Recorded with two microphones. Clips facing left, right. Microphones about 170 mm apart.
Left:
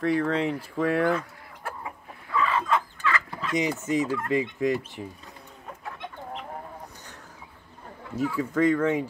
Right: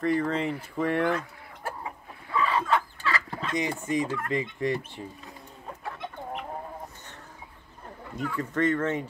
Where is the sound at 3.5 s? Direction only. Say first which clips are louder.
Left 3 dB; 20° left (ahead or behind).